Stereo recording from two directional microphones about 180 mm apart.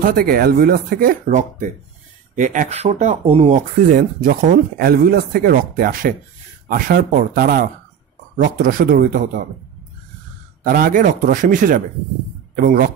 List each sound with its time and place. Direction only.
0.0 s speech: 55° right (ahead or behind)
2.3 s speech: 45° right (ahead or behind)
10.6 s speech: 50° right (ahead or behind)